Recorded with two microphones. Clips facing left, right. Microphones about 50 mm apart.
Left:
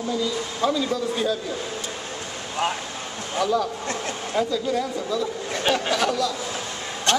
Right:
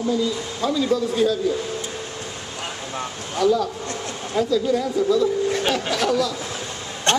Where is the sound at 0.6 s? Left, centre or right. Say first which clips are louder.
Right 3 dB; centre.